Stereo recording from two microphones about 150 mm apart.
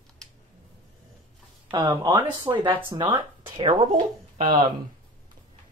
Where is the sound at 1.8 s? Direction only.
20° right (ahead or behind).